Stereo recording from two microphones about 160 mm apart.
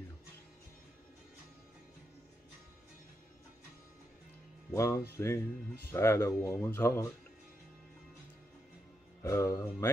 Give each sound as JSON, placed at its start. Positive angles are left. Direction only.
{"t": 4.7, "sound": "speech", "side_deg": 20}
{"t": 9.2, "sound": "speech", "side_deg": 20}